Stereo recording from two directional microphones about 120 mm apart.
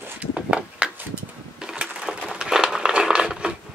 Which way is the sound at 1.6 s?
5° right (ahead or behind).